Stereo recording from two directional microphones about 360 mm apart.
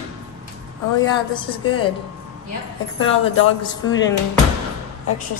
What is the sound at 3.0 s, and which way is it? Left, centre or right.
Speech, left.